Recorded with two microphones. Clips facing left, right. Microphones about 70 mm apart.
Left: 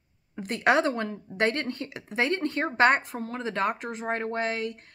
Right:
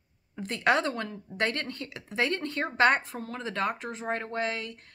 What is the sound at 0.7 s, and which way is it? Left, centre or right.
Speech, left.